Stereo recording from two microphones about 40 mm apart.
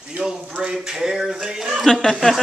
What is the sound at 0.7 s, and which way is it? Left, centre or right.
Speech, centre.